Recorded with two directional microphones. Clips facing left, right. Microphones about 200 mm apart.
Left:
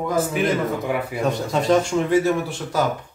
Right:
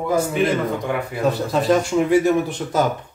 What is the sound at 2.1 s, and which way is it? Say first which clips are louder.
Speech: right 3 dB; 20° right (ahead or behind).